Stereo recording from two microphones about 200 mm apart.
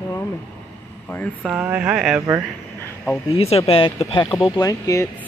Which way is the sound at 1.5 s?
5° right (ahead or behind).